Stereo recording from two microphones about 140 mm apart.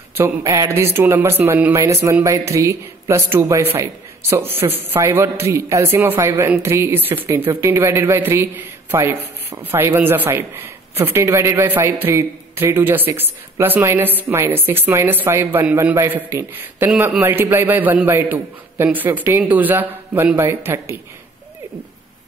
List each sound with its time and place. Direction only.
0.1 s speech: 20° right (ahead or behind)